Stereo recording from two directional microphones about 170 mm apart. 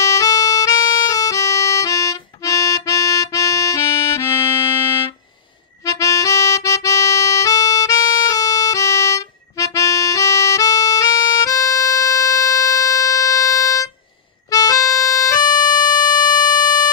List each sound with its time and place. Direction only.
0.0 s music: 20° left (ahead or behind)
5.9 s harmonica: 20° left (ahead or behind)
14.5 s music: 20° left (ahead or behind)